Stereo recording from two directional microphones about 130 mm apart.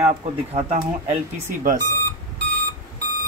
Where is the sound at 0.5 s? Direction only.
60° right (ahead or behind).